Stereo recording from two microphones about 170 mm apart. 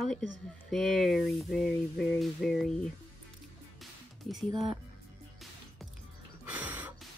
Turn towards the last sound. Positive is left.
turn(degrees=-10)  # may be behind; listen again after turning